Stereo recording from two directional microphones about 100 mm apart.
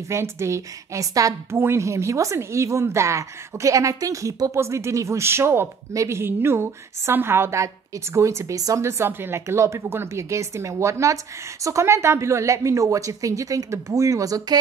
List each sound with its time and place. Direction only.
0.1 s a woman's voice: 30° right (ahead or behind)